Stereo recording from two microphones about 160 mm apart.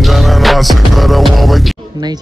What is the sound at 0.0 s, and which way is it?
Music, centre (ahead or behind).